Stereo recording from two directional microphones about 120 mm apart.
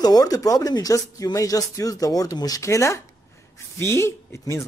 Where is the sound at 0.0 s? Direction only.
35° left (ahead or behind).